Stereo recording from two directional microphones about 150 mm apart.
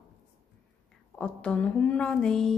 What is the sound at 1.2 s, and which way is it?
A woman's voice, 10° left (ahead or behind).